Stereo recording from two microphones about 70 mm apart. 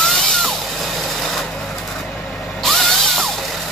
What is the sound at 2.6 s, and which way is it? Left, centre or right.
Drill, centre.